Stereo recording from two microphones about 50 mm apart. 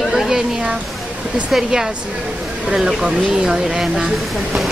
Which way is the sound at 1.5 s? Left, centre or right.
Centre.